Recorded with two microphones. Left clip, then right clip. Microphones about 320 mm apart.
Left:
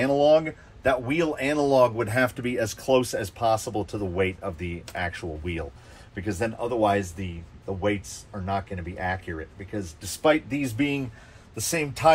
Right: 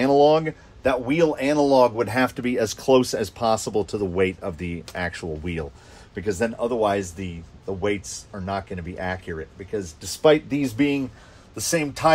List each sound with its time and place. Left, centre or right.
0.0 s speech: right